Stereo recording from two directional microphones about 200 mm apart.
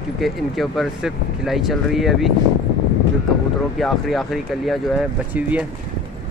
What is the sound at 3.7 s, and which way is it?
Speech, centre (ahead or behind).